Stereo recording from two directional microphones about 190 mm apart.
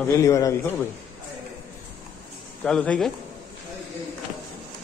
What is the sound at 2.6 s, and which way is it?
Speech, 5° left (ahead or behind).